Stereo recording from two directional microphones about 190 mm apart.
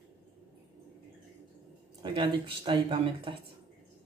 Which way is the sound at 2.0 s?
25° right (ahead or behind).